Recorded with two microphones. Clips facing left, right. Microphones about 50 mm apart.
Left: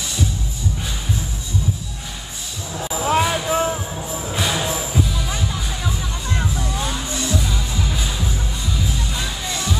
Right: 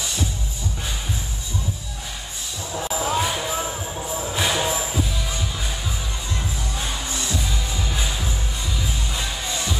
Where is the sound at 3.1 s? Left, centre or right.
Left.